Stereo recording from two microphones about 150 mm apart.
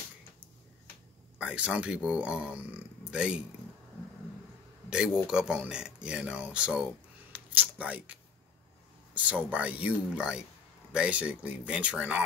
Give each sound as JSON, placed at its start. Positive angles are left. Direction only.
{"t": 1.4, "sound": "speech", "side_deg": -10}
{"t": 4.8, "sound": "speech", "side_deg": -5}
{"t": 7.3, "sound": "a sound", "side_deg": -10}
{"t": 9.1, "sound": "speech", "side_deg": -10}